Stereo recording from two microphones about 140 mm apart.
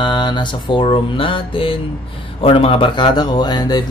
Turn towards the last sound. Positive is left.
turn(degrees=30)  # may be behind; listen again after turning